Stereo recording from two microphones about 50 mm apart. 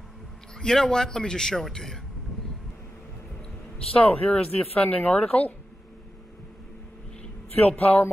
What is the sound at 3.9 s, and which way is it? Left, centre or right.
Speech, left.